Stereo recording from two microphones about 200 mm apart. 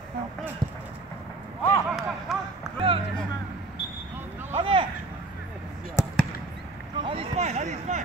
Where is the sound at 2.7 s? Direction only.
30° right (ahead or behind).